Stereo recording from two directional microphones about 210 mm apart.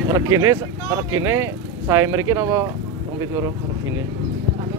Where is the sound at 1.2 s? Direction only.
10° right (ahead or behind).